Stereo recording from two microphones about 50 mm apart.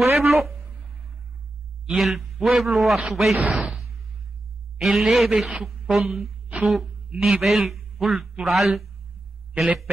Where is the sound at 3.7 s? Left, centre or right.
Centre.